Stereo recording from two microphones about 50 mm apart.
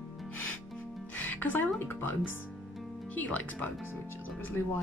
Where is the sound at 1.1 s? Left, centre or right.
Left.